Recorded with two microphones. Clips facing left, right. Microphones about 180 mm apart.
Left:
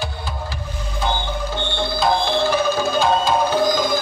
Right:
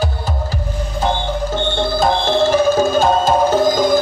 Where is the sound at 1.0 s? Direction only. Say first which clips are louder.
Right 4 dB; 45° right (ahead or behind).